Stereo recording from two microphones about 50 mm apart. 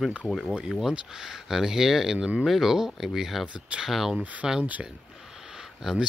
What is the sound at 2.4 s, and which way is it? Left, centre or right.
Speech, centre.